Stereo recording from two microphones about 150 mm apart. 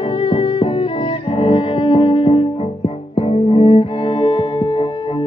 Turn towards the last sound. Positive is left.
turn(degrees=35)  # may be behind; listen again after turning